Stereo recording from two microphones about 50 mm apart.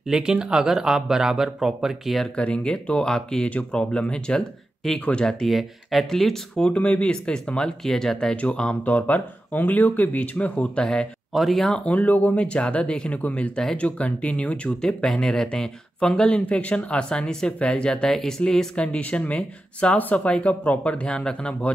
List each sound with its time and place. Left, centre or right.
0.0 s speech: centre
2.3 s speech: left
4.8 s speech: centre
6.7 s speech: left
7.8 s speech: centre
8.4 s speech: left
11.3 s speech: centre
11.7 s speech: left
15.0 s speech: centre
18.8 s speech: left